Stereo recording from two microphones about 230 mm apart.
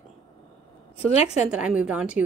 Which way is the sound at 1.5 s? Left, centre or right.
Centre.